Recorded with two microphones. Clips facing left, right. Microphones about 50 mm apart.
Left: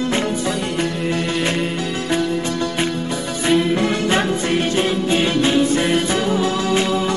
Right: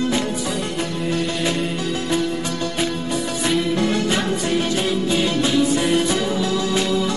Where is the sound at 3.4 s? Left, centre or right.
Centre.